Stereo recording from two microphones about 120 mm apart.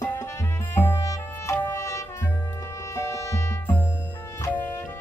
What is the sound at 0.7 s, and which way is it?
Music, 20° left (ahead or behind).